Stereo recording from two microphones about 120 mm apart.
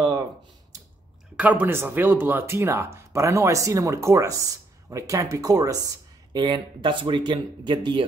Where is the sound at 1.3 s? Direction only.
10° right (ahead or behind).